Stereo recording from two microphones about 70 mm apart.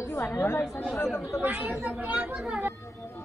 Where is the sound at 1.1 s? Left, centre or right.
Centre.